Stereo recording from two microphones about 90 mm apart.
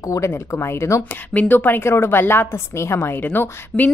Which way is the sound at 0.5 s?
30° left (ahead or behind).